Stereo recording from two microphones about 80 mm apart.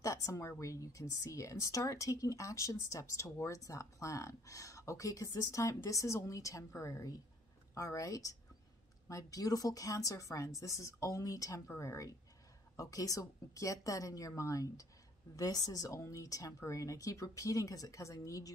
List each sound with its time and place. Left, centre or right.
0.0 s speech: left